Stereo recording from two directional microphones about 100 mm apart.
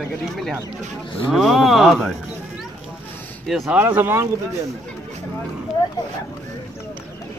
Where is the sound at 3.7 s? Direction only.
20° right (ahead or behind).